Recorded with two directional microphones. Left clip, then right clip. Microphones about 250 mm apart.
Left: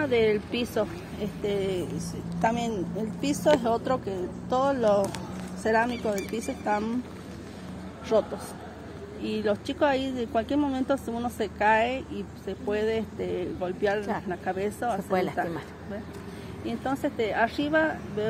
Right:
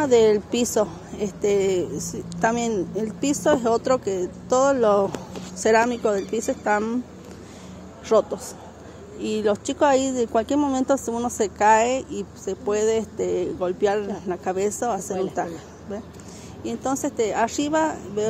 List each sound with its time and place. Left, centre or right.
0.0 s a woman's voice: right
8.1 s speech: right
16.6 s a woman's voice: right